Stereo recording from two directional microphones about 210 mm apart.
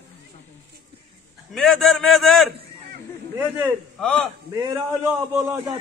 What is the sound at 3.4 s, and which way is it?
A man's voice, 10° right (ahead or behind).